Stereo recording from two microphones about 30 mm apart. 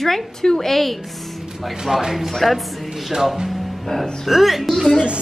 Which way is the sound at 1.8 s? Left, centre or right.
Centre.